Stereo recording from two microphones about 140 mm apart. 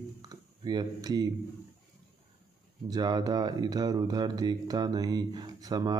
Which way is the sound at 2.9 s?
30° right (ahead or behind).